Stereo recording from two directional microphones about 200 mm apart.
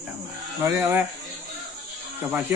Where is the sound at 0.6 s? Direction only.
15° right (ahead or behind).